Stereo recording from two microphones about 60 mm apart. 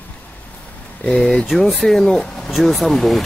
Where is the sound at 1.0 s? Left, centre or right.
Centre.